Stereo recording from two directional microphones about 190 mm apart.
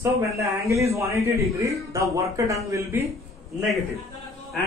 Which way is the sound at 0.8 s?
15° right (ahead or behind).